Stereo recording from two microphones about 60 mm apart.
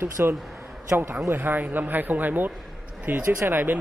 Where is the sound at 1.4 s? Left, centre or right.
Right.